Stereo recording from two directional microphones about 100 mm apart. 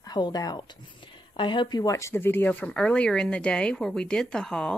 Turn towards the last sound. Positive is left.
turn(degrees=5)  # may be behind; listen again after turning